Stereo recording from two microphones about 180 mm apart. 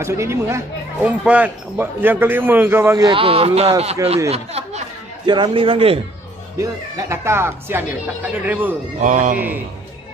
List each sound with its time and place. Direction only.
0.0 s speech: 15° right (ahead or behind)
3.1 s speech: 30° right (ahead or behind)
6.6 s speech: 15° right (ahead or behind)
9.0 s speech: 45° right (ahead or behind)